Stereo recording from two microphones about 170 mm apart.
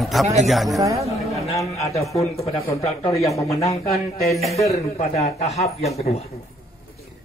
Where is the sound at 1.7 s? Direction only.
40° left (ahead or behind).